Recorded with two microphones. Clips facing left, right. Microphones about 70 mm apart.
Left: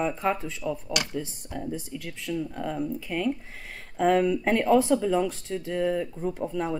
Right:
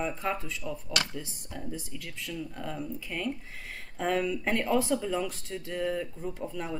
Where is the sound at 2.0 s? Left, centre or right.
Left.